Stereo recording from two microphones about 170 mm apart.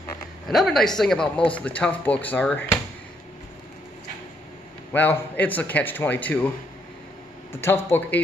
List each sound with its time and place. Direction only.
0.5 s speech: centre (ahead or behind)
4.9 s speech: 10° left (ahead or behind)
7.5 s speech: 15° left (ahead or behind)